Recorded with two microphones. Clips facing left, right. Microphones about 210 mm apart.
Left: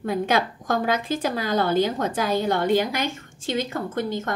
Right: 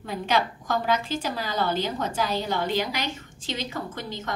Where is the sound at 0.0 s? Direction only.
50° left (ahead or behind).